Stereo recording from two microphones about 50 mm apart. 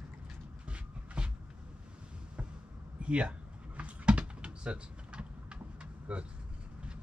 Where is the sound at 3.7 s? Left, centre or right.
Right.